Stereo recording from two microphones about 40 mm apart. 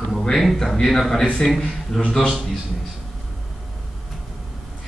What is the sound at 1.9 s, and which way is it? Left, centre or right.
Speech, centre.